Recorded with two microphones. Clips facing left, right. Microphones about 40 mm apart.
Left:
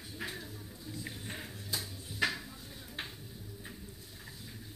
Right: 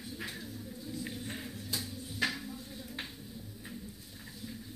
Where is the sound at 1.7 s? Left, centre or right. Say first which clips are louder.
Even; centre.